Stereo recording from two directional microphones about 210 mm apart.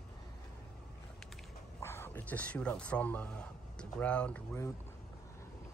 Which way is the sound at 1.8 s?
10° left (ahead or behind).